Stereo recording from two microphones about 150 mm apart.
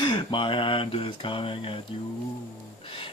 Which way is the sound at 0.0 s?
30° left (ahead or behind).